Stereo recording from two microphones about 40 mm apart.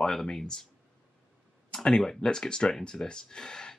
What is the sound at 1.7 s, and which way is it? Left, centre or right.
Speech, centre.